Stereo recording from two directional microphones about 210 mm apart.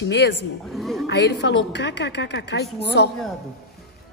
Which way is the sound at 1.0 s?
55° left (ahead or behind).